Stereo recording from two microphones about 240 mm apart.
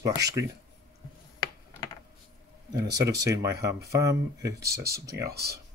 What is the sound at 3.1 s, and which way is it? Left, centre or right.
Speech, centre.